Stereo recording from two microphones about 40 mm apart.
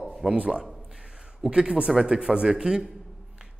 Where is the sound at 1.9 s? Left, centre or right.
Centre.